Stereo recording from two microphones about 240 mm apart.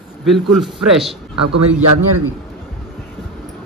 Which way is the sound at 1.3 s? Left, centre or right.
Right.